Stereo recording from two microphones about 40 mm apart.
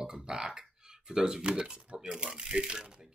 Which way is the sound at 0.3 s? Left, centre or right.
Centre.